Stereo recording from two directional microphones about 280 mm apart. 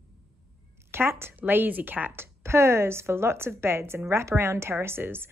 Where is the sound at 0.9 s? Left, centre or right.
Centre.